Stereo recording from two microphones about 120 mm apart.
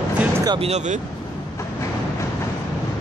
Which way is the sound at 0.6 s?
75° right (ahead or behind).